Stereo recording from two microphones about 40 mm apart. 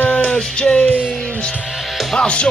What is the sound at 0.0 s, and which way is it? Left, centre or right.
Music, left.